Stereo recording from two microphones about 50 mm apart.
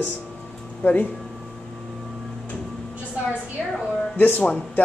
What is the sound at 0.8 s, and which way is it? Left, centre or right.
Speech, left.